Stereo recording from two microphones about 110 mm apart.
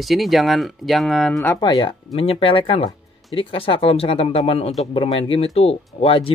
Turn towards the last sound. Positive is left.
turn(degrees=60)  # may be behind; listen again after turning